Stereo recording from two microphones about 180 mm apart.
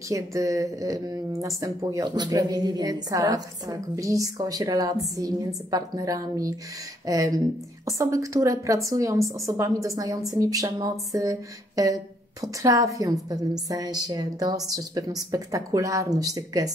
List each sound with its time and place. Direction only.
0.1 s a woman's voice: 20° right (ahead or behind)